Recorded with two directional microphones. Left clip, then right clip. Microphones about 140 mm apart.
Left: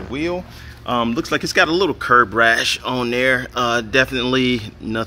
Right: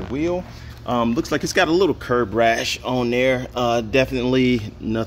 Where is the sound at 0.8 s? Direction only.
10° right (ahead or behind).